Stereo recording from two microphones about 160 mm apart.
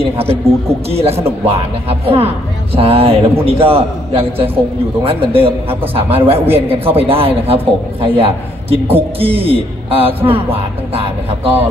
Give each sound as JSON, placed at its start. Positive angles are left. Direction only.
{"t": 0.0, "sound": "a man's voice", "side_deg": -40}